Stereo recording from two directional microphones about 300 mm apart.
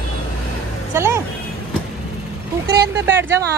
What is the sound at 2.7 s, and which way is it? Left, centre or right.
Speech, right.